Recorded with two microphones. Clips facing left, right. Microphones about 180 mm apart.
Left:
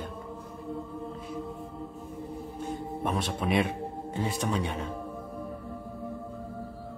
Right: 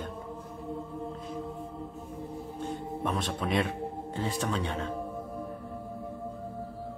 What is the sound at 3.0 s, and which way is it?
Speech, 10° left (ahead or behind).